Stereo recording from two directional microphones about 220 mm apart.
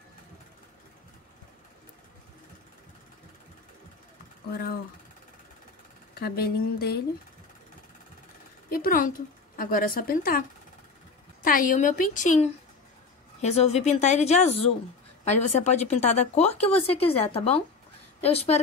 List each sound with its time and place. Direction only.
6.1 s speech: 45° left (ahead or behind)
8.6 s a woman's voice: 40° left (ahead or behind)
11.4 s speech: 40° left (ahead or behind)